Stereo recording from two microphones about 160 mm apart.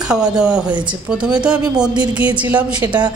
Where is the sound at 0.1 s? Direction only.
5° right (ahead or behind).